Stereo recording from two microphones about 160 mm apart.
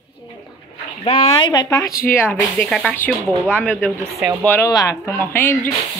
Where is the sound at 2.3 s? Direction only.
10° left (ahead or behind).